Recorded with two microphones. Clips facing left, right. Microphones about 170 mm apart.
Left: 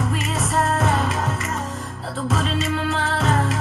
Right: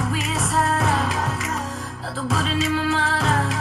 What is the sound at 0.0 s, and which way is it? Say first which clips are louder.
Music: left 1 dB; centre (ahead or behind).